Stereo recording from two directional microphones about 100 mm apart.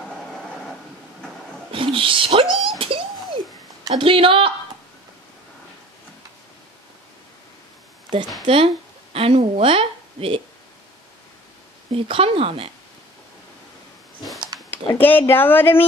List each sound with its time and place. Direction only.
1.7 s speech: 60° right (ahead or behind)
2.5 s speech: centre (ahead or behind)
3.9 s speech: 65° right (ahead or behind)
8.1 s speech: 55° right (ahead or behind)
8.5 s speech: 70° right (ahead or behind)
11.9 s speech: 70° right (ahead or behind)
14.5 s a sound: 40° right (ahead or behind)
15.0 s speech: 20° left (ahead or behind)